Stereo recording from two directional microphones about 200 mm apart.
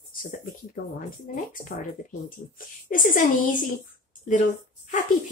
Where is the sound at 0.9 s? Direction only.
40° left (ahead or behind).